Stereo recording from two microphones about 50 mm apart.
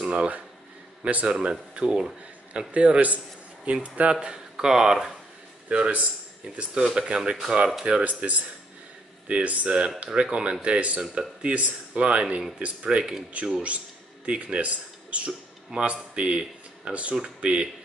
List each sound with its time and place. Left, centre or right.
0.0 s speech: right
2.7 s speech: right; by 5.1 s centre
5.7 s speech: right
7.8 s speech: right